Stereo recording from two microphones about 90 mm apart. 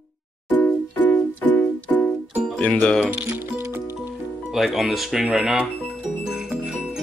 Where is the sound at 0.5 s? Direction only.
15° left (ahead or behind).